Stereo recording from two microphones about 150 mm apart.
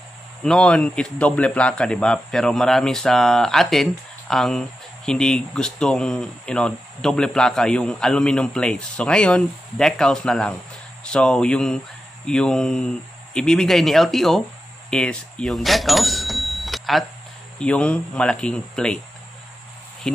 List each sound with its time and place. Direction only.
0.4 s speech: 5° left (ahead or behind)